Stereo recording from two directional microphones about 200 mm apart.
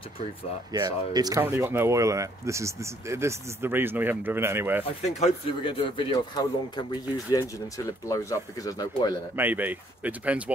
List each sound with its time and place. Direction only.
0.7 s speech: 20° right (ahead or behind)
4.8 s speech: 30° left (ahead or behind)
9.4 s speech: 10° right (ahead or behind)